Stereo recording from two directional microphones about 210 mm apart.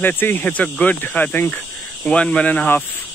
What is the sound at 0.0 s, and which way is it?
Speech, 10° left (ahead or behind).